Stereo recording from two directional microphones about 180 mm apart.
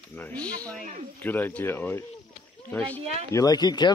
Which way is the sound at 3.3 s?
20° left (ahead or behind).